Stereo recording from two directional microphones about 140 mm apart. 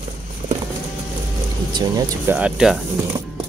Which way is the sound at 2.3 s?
10° right (ahead or behind).